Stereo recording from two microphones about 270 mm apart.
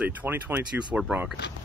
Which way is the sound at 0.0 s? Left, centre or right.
Centre.